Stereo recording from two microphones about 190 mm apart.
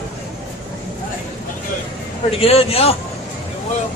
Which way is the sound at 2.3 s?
30° left (ahead or behind).